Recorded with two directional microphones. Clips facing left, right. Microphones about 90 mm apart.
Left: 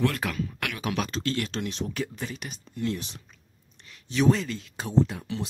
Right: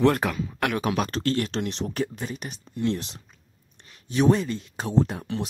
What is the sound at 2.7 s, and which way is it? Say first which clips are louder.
Speech: right 4 dB; 30° right (ahead or behind).